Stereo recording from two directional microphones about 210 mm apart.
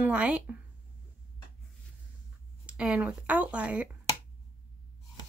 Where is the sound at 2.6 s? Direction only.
5° right (ahead or behind).